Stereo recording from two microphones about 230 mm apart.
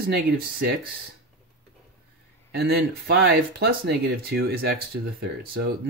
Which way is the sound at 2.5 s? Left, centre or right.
Right.